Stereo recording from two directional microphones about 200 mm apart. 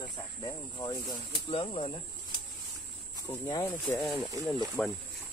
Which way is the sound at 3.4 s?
15° left (ahead or behind).